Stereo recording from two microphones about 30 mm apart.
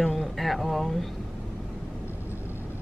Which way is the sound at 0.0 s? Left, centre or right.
Centre.